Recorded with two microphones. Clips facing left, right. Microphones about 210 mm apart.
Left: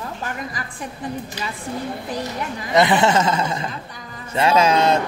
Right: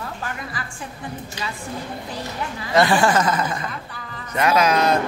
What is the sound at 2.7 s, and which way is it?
Speech, 20° left (ahead or behind).